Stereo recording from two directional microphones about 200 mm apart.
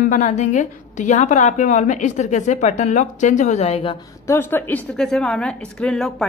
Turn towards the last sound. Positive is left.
turn(degrees=0)  # may be behind; listen again after turning